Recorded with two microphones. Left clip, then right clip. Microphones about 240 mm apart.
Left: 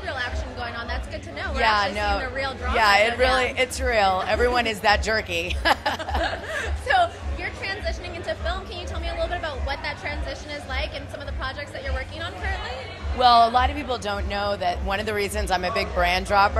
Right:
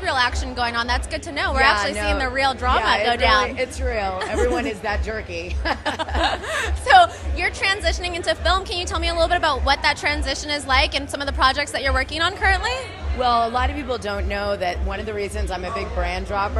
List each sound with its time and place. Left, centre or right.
0.0 s a woman's voice: right
1.6 s speech: centre
2.2 s speech: right
2.8 s speech: centre
5.9 s a sound: right
6.9 s a woman's voice: right
13.2 s speech: centre
14.9 s speech: centre